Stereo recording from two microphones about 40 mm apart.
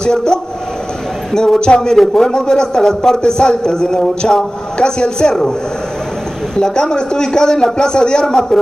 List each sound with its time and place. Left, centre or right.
0.0 s a man's voice: centre
1.6 s a man's voice: centre
6.5 s a man's voice: centre